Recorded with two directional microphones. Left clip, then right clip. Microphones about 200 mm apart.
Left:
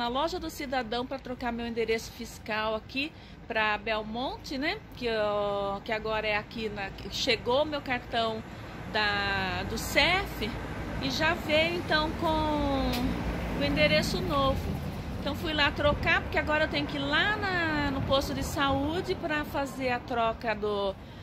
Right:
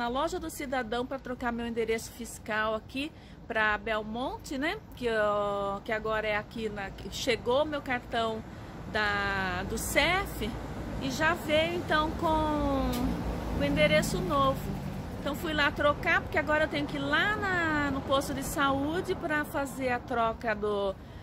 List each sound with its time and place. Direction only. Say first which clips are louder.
0.0 s speech: left 1 dB; 10° right (ahead or behind)
15.2 s speech: left 1 dB; 10° right (ahead or behind)